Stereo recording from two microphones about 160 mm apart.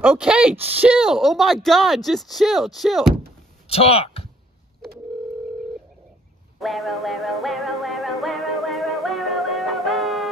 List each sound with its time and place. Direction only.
0.0 s speech: 5° right (ahead or behind)
3.6 s speech: 35° left (ahead or behind)
6.6 s music: centre (ahead or behind)